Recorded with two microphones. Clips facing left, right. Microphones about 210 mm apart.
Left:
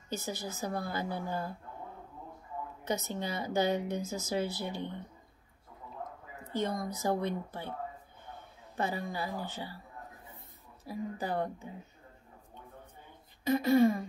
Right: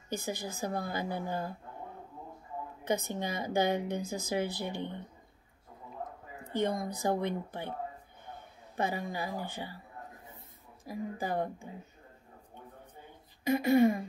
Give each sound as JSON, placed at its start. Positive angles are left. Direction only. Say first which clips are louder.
{"t": 0.1, "sound": "speech", "louder": "right 1 dB", "side_deg": -15}
{"t": 3.0, "sound": "speech", "louder": "right 1 dB", "side_deg": -15}
{"t": 6.6, "sound": "speech", "louder": "right 2 dB", "side_deg": -15}
{"t": 8.7, "sound": "speech", "louder": "right 1 dB", "side_deg": -15}
{"t": 10.9, "sound": "speech", "louder": "even", "side_deg": -10}
{"t": 13.5, "sound": "speech", "louder": "even", "side_deg": -15}